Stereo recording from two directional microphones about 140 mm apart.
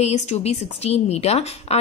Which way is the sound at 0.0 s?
50° left (ahead or behind).